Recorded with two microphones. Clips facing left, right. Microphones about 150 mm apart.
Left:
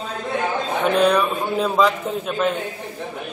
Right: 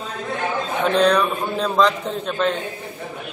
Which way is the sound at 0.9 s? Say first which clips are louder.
Right 1 dB; 5° left (ahead or behind).